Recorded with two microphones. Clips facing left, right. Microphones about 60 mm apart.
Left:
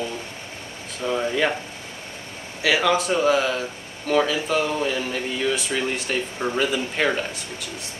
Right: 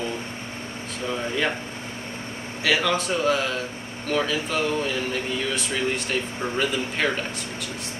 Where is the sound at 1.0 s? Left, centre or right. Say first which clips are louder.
Left 5 dB; centre.